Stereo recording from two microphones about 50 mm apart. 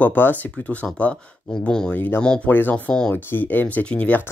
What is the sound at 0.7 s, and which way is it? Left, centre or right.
Speech, left.